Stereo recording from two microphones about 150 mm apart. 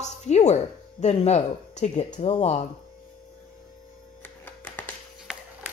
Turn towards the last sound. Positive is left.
turn(degrees=10)  # may be behind; listen again after turning